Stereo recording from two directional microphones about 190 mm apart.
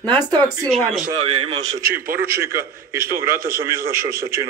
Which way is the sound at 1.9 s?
50° right (ahead or behind).